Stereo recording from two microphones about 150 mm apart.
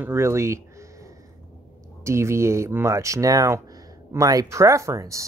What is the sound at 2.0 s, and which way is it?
Speech, 20° right (ahead or behind).